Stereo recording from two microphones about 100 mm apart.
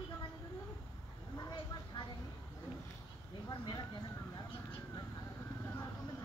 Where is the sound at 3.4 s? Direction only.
45° left (ahead or behind).